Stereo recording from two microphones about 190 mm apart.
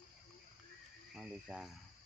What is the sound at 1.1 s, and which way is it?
Cricket, centre (ahead or behind).